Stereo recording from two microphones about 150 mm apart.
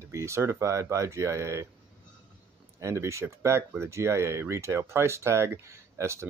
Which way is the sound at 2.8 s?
20° right (ahead or behind).